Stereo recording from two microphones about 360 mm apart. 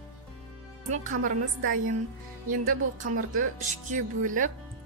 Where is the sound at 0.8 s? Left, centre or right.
Centre.